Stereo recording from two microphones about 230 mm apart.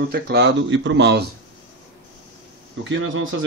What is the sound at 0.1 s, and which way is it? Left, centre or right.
A man's voice, right.